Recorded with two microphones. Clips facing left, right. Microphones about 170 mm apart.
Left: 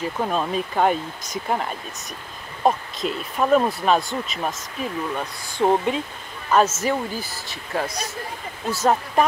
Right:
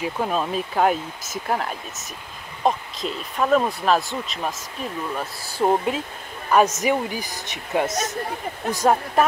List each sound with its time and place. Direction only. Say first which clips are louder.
0.0 s speech: even; 5° right (ahead or behind)
6.5 s speech: right 1 dB; 15° right (ahead or behind)